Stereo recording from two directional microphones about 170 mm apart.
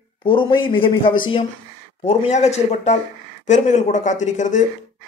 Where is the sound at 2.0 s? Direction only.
40° left (ahead or behind).